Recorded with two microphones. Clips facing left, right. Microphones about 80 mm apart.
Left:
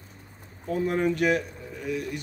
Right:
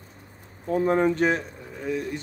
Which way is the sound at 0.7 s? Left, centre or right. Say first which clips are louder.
Right 4 dB; right.